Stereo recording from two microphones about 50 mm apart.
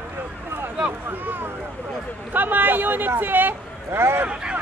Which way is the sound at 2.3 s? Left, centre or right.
Right.